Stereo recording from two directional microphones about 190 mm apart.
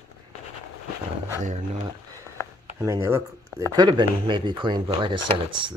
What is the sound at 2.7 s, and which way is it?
Speech, 15° right (ahead or behind).